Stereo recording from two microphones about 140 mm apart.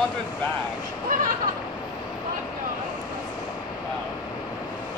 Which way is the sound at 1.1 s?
75° right (ahead or behind).